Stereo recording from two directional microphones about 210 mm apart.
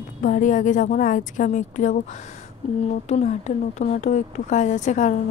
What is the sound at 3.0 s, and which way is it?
A woman's voice, 35° left (ahead or behind).